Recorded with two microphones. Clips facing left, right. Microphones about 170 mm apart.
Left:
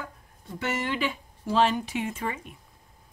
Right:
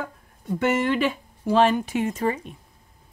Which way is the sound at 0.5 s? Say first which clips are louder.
Right 7 dB; 50° right (ahead or behind).